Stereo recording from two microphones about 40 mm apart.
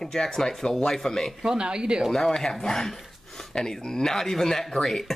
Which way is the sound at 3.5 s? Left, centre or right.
Centre.